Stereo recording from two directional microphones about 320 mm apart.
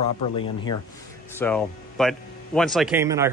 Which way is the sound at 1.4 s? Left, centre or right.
Centre.